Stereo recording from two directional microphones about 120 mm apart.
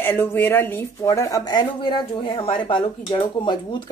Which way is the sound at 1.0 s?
30° left (ahead or behind).